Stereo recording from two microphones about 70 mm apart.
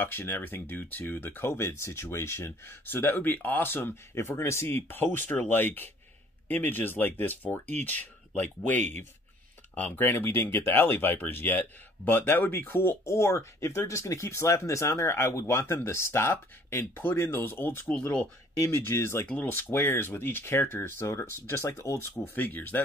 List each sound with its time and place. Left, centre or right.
0.0 s speech: left
22.2 s speech: left